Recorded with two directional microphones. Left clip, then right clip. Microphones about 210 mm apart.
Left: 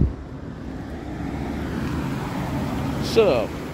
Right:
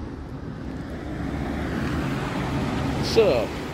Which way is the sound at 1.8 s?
30° left (ahead or behind).